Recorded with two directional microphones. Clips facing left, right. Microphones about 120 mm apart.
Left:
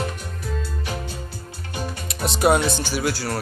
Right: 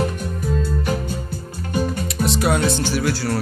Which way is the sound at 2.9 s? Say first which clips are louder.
Right 3 dB; 10° left (ahead or behind).